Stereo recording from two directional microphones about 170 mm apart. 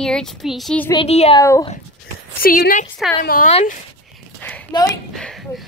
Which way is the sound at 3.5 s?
40° left (ahead or behind).